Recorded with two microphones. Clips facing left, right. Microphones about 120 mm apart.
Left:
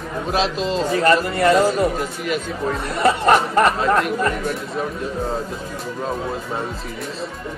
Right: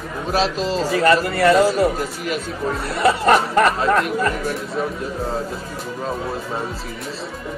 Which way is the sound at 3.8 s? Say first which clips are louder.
Even; 35° left (ahead or behind).